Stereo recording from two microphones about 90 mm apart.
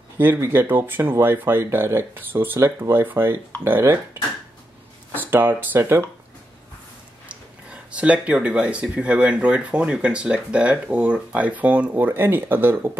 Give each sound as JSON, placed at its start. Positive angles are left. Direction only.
{"t": 0.2, "sound": "speech", "side_deg": -25}
{"t": 5.1, "sound": "speech", "side_deg": -20}
{"t": 7.7, "sound": "speech", "side_deg": -15}